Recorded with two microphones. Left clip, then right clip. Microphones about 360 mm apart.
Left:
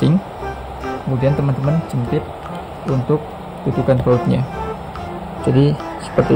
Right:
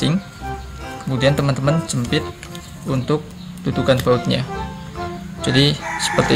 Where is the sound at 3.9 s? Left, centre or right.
Centre.